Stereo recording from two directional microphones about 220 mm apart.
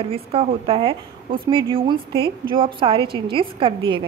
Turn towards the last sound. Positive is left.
turn(degrees=-25)  # may be behind; listen again after turning